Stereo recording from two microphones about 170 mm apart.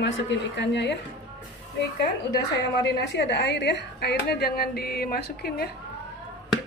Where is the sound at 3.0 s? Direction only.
90° left.